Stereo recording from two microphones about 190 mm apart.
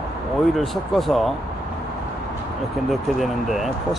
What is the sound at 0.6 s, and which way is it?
Speech, centre (ahead or behind).